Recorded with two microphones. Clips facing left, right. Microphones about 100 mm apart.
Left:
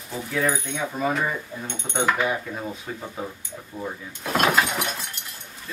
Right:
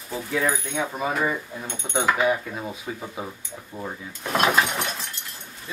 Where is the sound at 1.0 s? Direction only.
10° right (ahead or behind).